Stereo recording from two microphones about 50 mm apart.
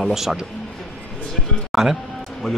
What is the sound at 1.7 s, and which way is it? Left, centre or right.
Speech, centre.